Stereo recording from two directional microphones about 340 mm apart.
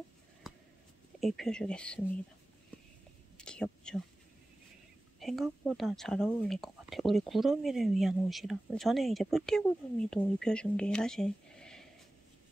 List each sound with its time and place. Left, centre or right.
1.2 s speech: centre
3.3 s whispering: centre
5.2 s speech: centre